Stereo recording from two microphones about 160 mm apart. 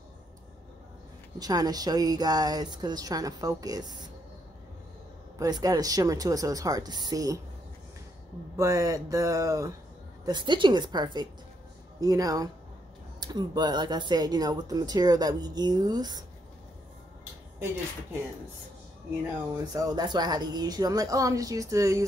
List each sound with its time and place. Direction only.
1.4 s speech: 25° right (ahead or behind)
5.4 s speech: 20° right (ahead or behind)
8.5 s speech: 20° right (ahead or behind)
19.5 s speech: 20° right (ahead or behind)